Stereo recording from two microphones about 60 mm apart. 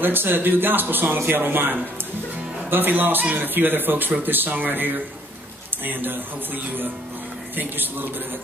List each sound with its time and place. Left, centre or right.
0.0 s a man's voice: right